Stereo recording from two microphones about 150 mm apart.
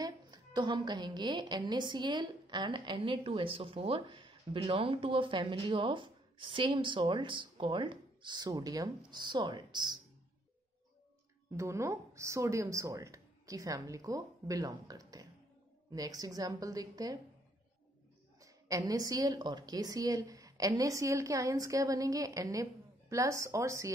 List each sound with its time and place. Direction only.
0.0 s a woman's voice: 30° right (ahead or behind)
11.5 s a woman's voice: 20° right (ahead or behind)
18.4 s a woman's voice: 25° right (ahead or behind)